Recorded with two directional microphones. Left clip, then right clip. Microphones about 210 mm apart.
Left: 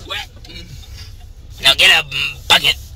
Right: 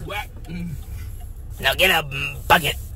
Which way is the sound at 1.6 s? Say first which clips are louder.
Left 7 dB; 35° right (ahead or behind).